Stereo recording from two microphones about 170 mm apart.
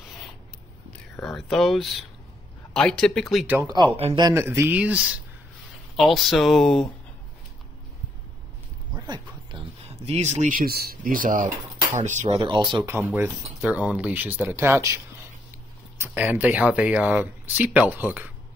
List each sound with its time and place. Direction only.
1.1 s speech: 5° left (ahead or behind)
3.5 s speech: 25° right (ahead or behind)
4.2 s speech: 15° right (ahead or behind); by 6.9 s centre (ahead or behind)
8.9 s a sound: 25° right (ahead or behind)
10.0 s speech: 40° right (ahead or behind)
12.9 s speech: 15° right (ahead or behind)
16.0 s speech: 10° right (ahead or behind)